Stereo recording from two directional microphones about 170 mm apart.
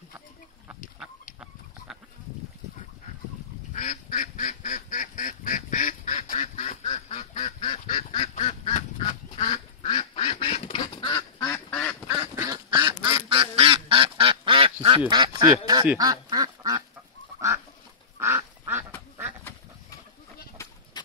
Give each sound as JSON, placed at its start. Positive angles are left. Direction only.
{"t": 3.7, "sound": "duck", "side_deg": 45}
{"t": 12.1, "sound": "duck", "side_deg": -20}
{"t": 13.3, "sound": "duck", "side_deg": -30}
{"t": 15.0, "sound": "quack", "side_deg": -25}
{"t": 16.0, "sound": "duck", "side_deg": -25}
{"t": 18.2, "sound": "duck", "side_deg": -10}
{"t": 20.6, "sound": "a sound", "side_deg": 15}